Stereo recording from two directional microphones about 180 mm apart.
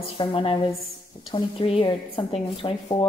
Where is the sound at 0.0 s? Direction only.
30° left (ahead or behind).